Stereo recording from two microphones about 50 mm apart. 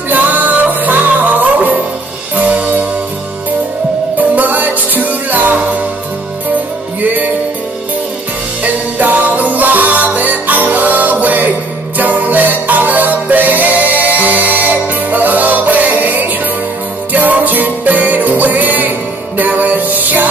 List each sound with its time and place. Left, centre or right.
0.1 s music: right
4.4 s music: right
8.9 s music: right